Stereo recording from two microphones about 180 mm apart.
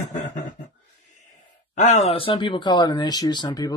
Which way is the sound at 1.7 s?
40° left (ahead or behind).